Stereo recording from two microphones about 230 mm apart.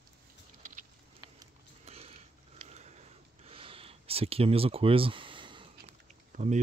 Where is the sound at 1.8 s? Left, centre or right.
Right.